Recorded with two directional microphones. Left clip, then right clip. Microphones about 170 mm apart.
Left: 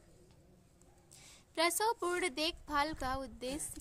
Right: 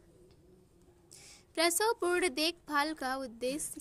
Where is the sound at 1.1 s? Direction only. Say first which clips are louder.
Right 4 dB; 10° right (ahead or behind).